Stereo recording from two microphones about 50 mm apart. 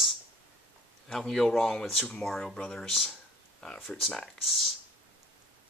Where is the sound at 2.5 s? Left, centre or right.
Centre.